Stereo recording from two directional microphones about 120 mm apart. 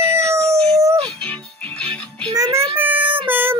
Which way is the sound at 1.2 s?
10° left (ahead or behind).